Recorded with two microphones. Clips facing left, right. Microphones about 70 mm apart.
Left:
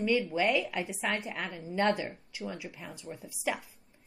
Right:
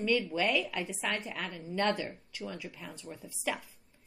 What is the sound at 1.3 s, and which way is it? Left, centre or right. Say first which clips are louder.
Speech: left 1 dB; left.